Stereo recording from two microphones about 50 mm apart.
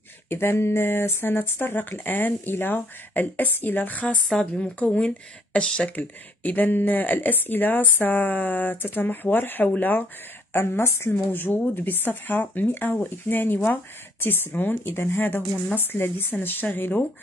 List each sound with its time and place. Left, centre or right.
0.3 s speech: left
4.3 s speech: centre
5.9 s speech: left
10.5 s speech: left
11.1 s speech: left